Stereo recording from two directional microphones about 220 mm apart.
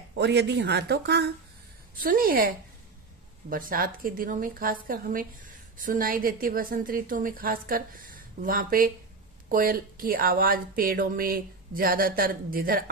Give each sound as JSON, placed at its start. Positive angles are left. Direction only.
{"t": 0.1, "sound": "a woman's voice", "side_deg": -50}